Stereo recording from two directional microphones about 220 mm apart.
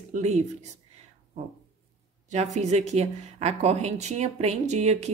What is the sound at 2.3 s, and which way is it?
A woman's voice, 30° right (ahead or behind).